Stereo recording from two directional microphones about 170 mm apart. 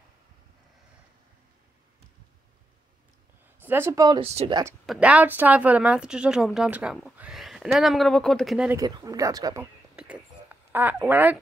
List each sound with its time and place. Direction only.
3.6 s speech: 15° right (ahead or behind)
4.2 s speech: 35° right (ahead or behind)
4.8 s speech: 10° right (ahead or behind)
8.6 s speech: 20° right (ahead or behind)
9.9 s a sound: 10° right (ahead or behind)